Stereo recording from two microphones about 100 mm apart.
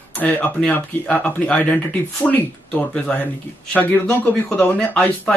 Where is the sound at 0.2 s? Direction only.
15° left (ahead or behind).